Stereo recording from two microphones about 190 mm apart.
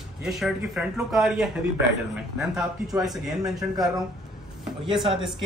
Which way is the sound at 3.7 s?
20° right (ahead or behind).